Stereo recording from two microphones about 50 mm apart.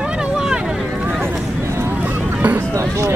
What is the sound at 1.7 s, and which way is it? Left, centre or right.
Vehicle, right.